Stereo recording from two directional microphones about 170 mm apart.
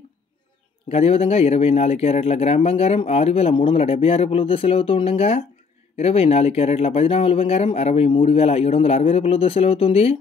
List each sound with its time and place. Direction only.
0.9 s speech: 35° left (ahead or behind)